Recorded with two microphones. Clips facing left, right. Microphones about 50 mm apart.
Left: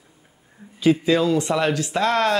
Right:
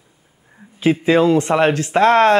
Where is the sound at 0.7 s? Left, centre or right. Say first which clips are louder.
Right 3 dB; right.